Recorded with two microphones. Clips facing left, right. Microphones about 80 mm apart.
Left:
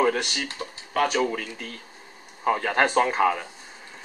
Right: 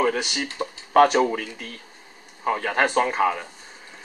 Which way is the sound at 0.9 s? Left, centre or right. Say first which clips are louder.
Right 7 dB; right.